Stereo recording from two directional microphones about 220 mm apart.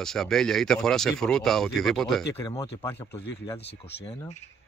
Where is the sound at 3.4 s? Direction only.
25° left (ahead or behind).